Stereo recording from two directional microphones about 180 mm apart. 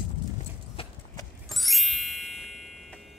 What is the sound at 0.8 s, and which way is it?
Horse, 30° left (ahead or behind).